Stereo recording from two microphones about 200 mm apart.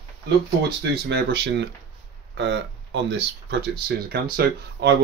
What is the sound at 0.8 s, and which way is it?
Speech, 60° right (ahead or behind).